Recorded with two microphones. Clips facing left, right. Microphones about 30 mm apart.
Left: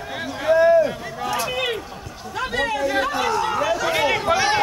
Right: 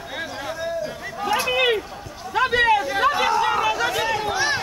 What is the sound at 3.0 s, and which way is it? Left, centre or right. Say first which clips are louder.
Chatter: right 3 dB; centre.